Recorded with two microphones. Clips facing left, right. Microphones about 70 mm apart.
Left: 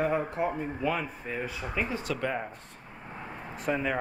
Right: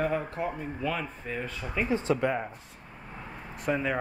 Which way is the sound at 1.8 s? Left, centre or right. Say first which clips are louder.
Right 6 dB; right.